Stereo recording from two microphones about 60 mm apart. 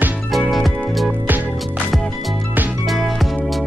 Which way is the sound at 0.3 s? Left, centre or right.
Centre.